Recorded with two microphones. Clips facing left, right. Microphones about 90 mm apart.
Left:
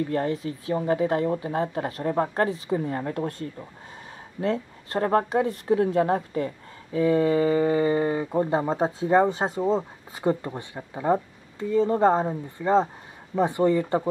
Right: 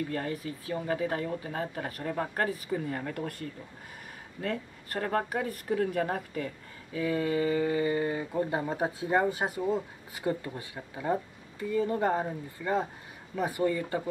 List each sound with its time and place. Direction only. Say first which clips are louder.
0.1 s speech: left 7 dB; 30° left (ahead or behind)